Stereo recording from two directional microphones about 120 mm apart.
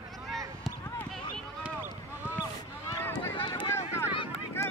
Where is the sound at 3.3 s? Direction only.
40° left (ahead or behind).